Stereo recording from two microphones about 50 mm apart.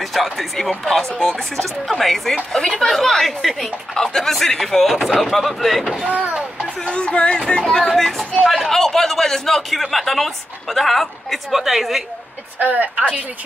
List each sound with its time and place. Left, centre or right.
0.0 s a man's voice: centre
6.8 s a man's voice: left; by 12.0 s centre
12.5 s a woman's voice: right